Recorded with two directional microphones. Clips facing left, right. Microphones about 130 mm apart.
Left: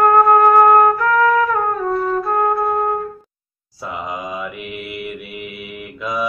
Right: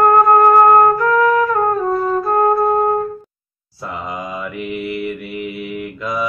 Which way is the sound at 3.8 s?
10° left (ahead or behind).